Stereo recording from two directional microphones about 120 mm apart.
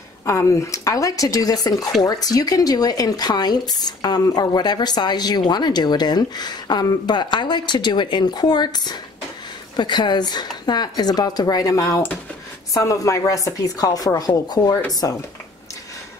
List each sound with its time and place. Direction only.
0.2 s speech: 25° left (ahead or behind)